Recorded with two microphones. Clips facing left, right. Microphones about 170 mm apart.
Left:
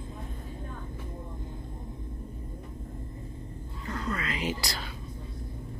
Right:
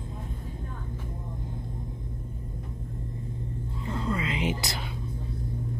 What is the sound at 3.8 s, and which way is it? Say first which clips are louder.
Music: right 3 dB; 25° right (ahead or behind).